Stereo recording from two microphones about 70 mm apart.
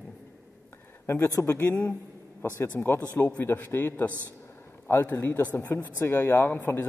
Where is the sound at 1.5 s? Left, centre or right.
Left.